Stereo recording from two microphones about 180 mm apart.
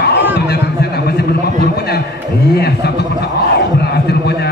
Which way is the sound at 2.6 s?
65° left (ahead or behind).